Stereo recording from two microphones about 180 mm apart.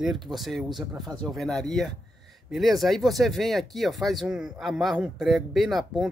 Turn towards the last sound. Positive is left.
turn(degrees=0)  # may be behind; listen again after turning